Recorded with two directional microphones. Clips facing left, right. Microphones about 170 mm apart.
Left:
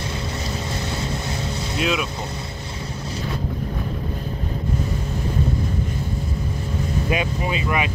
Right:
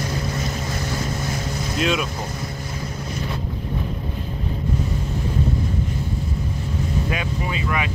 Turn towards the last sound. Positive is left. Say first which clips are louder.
# left 2 dB
turn(degrees=20)  # may be behind; listen again after turning